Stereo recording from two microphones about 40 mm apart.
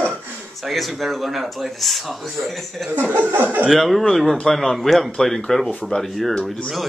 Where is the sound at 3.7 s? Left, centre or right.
Centre.